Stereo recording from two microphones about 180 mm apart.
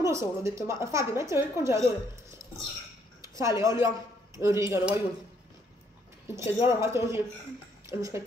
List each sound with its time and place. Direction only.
0.0 s a woman's voice: 15° right (ahead or behind)
3.2 s dishes: 15° right (ahead or behind)
3.6 s a woman's voice: 15° right (ahead or behind)
6.3 s a woman's voice: 15° right (ahead or behind)